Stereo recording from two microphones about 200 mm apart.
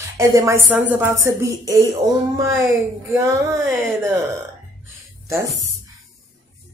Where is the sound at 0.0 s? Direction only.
15° right (ahead or behind).